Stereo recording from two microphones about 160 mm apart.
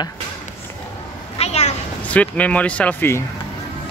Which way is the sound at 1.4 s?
40° left (ahead or behind).